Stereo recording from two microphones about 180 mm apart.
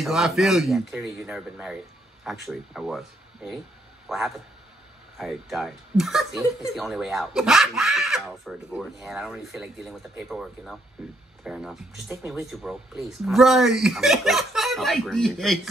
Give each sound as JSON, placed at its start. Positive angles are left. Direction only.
{"t": 0.0, "sound": "speech", "side_deg": 0}
{"t": 5.2, "sound": "speech", "side_deg": 0}